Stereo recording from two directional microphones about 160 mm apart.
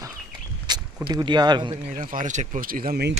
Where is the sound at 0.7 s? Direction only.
25° right (ahead or behind).